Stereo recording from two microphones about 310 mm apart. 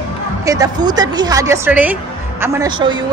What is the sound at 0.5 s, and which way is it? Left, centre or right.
Speech, centre.